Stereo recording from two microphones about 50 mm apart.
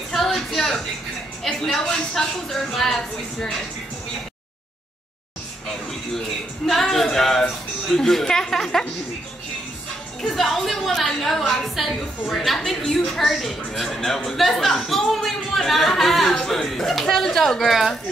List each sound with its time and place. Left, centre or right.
0.1 s a sound: centre
1.4 s a woman's voice: centre
6.1 s a man's voice: centre
10.2 s speech: centre